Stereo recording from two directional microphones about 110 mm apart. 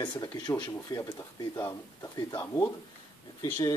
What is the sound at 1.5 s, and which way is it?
Speech, 25° left (ahead or behind).